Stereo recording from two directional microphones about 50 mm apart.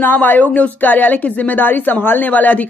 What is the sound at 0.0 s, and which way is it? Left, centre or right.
A woman's voice, left.